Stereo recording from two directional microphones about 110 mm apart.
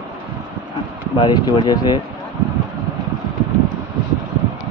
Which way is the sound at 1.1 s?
45° left (ahead or behind).